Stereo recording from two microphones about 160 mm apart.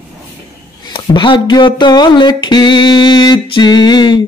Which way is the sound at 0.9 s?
30° left (ahead or behind).